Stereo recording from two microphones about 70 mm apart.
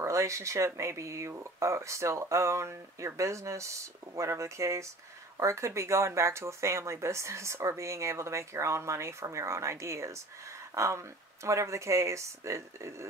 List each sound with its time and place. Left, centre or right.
0.0 s speech: right